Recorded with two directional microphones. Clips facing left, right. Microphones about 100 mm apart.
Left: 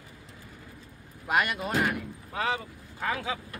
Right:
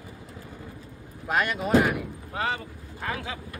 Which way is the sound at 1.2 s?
5° left (ahead or behind).